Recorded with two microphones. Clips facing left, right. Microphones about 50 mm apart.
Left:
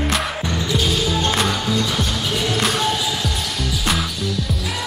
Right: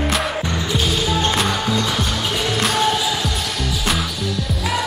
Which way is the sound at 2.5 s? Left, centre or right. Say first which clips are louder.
Right 1 dB; centre.